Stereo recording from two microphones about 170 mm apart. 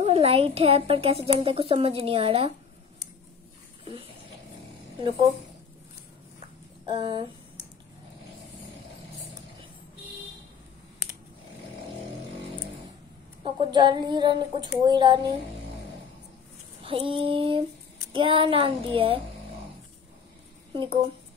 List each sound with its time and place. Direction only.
0.0 s a woman's voice: 35° right (ahead or behind)
6.9 s speech: 25° right (ahead or behind)
13.4 s speech: 25° right (ahead or behind)
16.8 s a woman's voice: 30° right (ahead or behind)
20.7 s speech: 30° right (ahead or behind)